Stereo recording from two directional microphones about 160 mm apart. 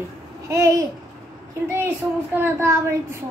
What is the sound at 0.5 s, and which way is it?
Babbling, 20° right (ahead or behind).